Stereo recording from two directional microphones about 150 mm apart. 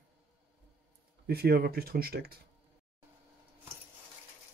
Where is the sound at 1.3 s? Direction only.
90° right.